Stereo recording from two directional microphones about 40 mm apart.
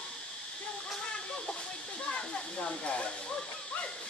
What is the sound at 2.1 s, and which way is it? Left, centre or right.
Hiss, left.